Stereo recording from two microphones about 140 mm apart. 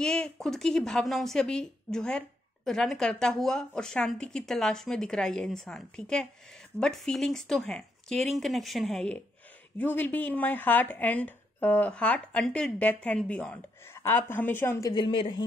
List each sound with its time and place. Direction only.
0.0 s a woman's voice: 5° left (ahead or behind)
14.9 s speech: 35° left (ahead or behind)